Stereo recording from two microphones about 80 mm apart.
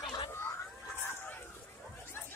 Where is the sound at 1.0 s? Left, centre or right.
Left.